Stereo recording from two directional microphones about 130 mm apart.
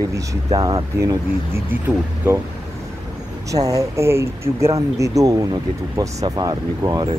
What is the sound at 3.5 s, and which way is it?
Speech, 25° right (ahead or behind).